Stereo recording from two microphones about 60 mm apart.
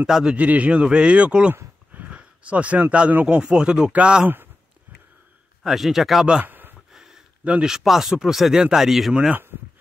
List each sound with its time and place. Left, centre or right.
0.0 s a man's voice: centre
0.5 s a man's voice: right
2.0 s a sound: right
3.3 s a man's voice: centre
5.6 s a man's voice: centre
6.4 s a sound: right
6.9 s a sound: centre
7.6 s a man's voice: centre
9.3 s speech: right